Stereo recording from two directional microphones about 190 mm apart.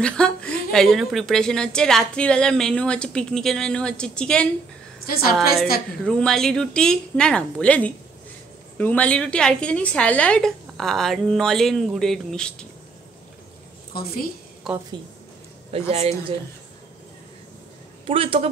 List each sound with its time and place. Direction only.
0.0 s a woman's voice: 5° left (ahead or behind)
5.0 s a woman's voice: 50° left (ahead or behind)
6.0 s a woman's voice: 5° left (ahead or behind)
13.9 s a woman's voice: 50° left (ahead or behind)
14.7 s a woman's voice: centre (ahead or behind)
15.7 s speech: 30° right (ahead or behind)
18.0 s a man's voice: 30° right (ahead or behind)